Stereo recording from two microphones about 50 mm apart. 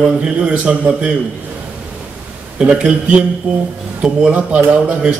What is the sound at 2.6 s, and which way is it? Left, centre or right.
Speech, right.